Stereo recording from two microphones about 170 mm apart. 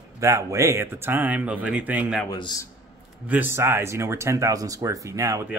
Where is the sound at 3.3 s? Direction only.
10° right (ahead or behind).